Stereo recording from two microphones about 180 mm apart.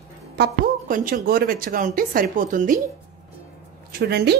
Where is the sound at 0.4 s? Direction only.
50° right (ahead or behind).